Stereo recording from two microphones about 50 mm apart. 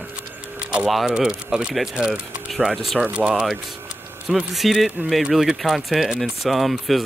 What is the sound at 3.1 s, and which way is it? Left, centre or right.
Speech, right.